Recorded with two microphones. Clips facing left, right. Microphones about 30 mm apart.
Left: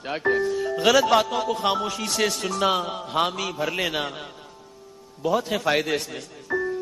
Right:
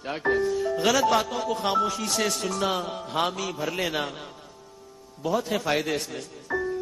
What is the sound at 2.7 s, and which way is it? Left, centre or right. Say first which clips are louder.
Speech: left 3 dB; left.